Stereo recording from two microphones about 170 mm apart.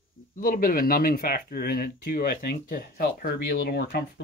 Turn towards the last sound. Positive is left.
turn(degrees=70)  # may be behind; listen again after turning